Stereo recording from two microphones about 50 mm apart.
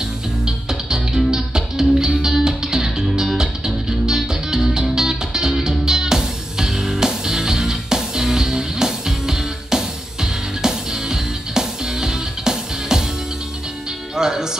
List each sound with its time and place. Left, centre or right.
0.5 s music: centre
14.1 s music: centre